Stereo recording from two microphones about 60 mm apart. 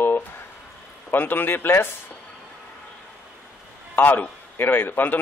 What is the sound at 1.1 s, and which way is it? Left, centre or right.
Speech, left.